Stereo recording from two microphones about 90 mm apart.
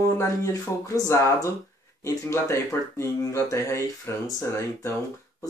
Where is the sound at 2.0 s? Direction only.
30° left (ahead or behind).